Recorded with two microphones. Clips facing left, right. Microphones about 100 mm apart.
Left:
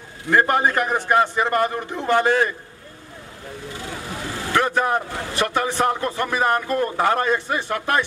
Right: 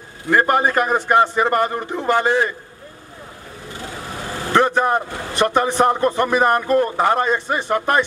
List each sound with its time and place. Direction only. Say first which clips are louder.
0.3 s speech: right 2 dB; 15° right (ahead or behind)
4.5 s speech: right 4 dB; 20° right (ahead or behind)